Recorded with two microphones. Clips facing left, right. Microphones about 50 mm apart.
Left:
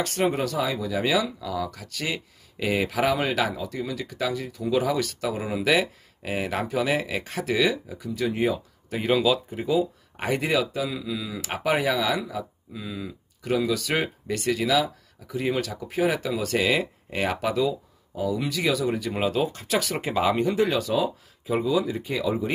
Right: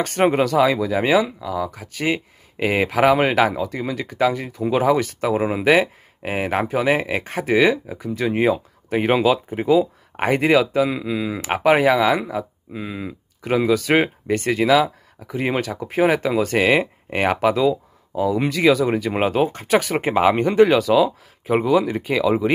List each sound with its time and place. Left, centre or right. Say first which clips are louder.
0.0 s speech: right 6 dB; right
0.3 s speech: right 9 dB; right
0.8 s speech: right 6 dB; right
1.4 s speech: right 4 dB; right